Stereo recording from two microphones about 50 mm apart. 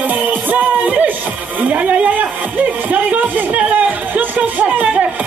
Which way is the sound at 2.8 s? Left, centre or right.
Right.